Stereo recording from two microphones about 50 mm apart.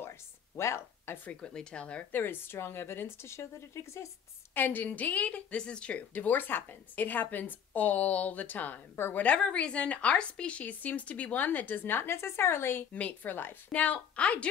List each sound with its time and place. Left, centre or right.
0.0 s a sound: left
1.0 s speech: left
1.3 s a woman's voice: centre
2.1 s speech: left
4.6 s a woman's voice: left
9.1 s a woman's voice: left
12.9 s a woman's voice: left
13.7 s a woman's voice: left